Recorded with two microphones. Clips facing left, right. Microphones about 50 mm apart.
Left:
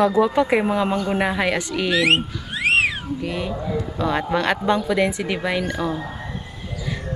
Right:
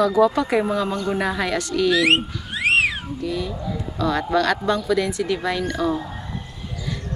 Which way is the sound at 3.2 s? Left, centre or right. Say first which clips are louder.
Right 1 dB; left.